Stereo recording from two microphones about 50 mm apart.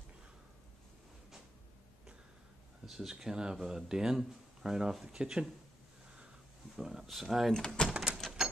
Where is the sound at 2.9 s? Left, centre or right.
Centre.